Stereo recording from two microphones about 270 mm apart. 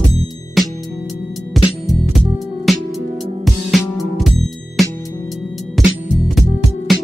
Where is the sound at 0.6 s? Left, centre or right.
Centre.